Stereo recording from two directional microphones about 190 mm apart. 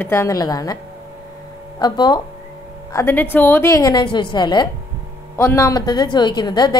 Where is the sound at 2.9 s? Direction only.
10° left (ahead or behind).